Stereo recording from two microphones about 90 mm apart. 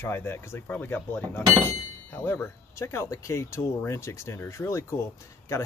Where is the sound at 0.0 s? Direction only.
25° left (ahead or behind).